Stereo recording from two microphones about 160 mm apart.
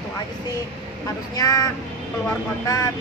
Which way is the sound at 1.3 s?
20° left (ahead or behind).